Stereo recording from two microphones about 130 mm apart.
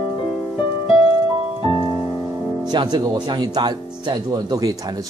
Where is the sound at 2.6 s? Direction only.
35° right (ahead or behind).